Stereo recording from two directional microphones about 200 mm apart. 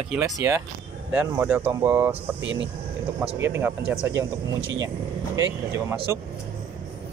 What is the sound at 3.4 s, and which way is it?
Speech, 10° right (ahead or behind).